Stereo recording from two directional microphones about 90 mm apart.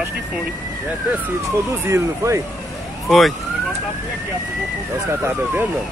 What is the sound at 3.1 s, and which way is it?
Speech, centre (ahead or behind).